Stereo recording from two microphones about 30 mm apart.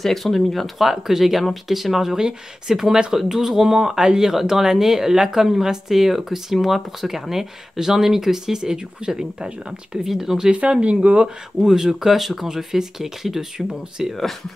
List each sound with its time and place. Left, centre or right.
0.0 s speech: centre
0.7 s speech: centre
4.0 s speech: right
4.3 s speech: centre
9.7 s speech: centre
10.8 s speech: right
11.6 s speech: centre
12.1 s speech: centre